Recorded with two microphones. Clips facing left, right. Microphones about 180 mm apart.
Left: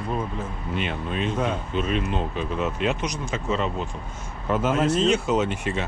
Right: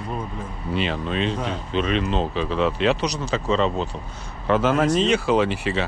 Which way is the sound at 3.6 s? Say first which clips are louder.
Right 5 dB; 30° right (ahead or behind).